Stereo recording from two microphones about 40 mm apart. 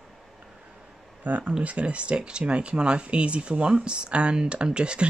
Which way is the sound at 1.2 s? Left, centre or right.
Right.